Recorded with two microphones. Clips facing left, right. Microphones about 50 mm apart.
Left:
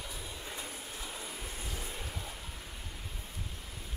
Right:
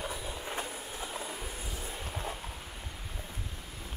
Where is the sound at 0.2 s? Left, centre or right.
Centre.